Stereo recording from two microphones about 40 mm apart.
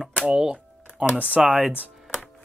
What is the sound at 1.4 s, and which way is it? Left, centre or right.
Speech, centre.